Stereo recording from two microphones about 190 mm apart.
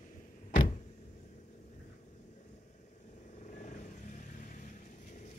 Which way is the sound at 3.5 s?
40° left (ahead or behind).